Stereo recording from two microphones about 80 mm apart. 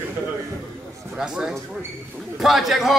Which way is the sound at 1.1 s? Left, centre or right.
Centre.